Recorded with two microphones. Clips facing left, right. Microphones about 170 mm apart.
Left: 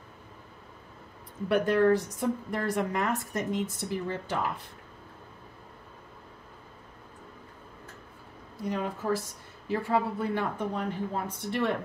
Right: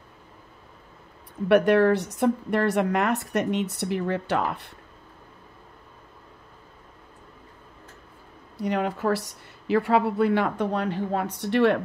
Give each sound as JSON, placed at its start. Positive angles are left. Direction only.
{"t": 1.5, "sound": "a woman's voice", "side_deg": -75}
{"t": 8.5, "sound": "a woman's voice", "side_deg": -75}